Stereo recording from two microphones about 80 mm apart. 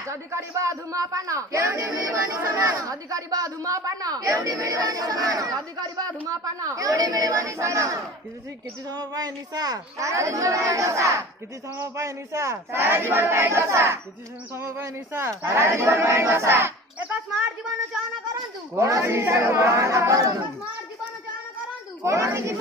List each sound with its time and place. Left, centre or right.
0.0 s a man's voice: right
5.8 s a man's voice: right
8.8 s a man's voice: right
12.8 s speech: right
18.3 s speech: right
22.0 s speech: right